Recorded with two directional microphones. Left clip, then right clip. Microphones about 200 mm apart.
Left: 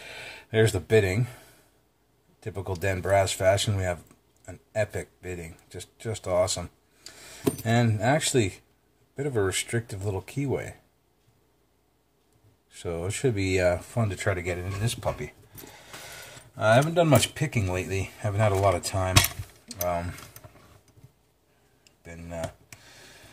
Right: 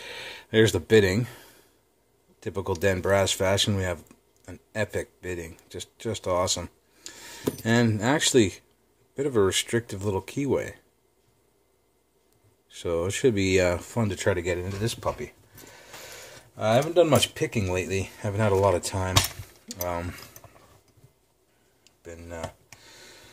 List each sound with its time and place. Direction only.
0.0 s speech: 45° right (ahead or behind)
2.4 s speech: 45° right (ahead or behind)
12.7 s speech: 45° right (ahead or behind)
16.9 s speech: 40° right (ahead or behind)